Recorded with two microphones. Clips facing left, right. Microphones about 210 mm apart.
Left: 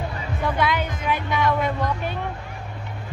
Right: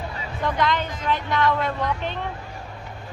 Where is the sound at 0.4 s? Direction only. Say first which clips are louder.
Even; 10° left (ahead or behind).